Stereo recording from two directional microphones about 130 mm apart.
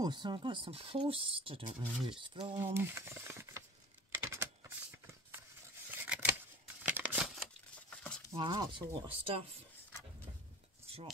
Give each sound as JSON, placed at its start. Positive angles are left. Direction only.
{"t": 0.0, "sound": "speech", "side_deg": -35}
{"t": 2.5, "sound": "speech", "side_deg": -20}
{"t": 4.1, "sound": "computer keyboard", "side_deg": -20}
{"t": 5.9, "sound": "scissors", "side_deg": -15}
{"t": 6.8, "sound": "a sound", "side_deg": -15}
{"t": 8.4, "sound": "speech", "side_deg": -40}